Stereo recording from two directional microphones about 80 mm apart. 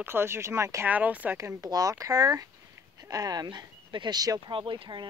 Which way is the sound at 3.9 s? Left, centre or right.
Right.